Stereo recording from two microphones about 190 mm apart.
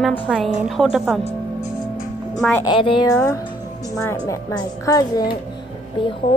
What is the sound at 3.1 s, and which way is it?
A woman's voice, 15° left (ahead or behind).